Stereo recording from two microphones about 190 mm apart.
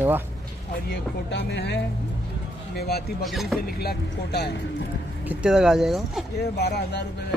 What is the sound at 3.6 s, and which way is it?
Speech, 55° left (ahead or behind).